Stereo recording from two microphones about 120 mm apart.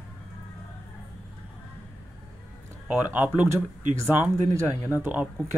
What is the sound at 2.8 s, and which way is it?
Speech, 15° right (ahead or behind).